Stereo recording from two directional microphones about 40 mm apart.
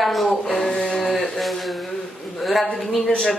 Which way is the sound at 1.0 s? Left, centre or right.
Centre.